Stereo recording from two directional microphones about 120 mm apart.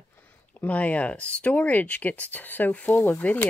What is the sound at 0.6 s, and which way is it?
Speech, 10° left (ahead or behind).